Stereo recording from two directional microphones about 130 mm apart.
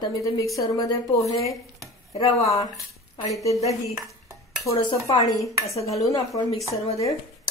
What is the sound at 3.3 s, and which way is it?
Speech, 25° left (ahead or behind).